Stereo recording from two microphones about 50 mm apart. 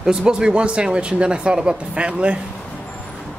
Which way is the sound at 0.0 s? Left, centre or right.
Centre.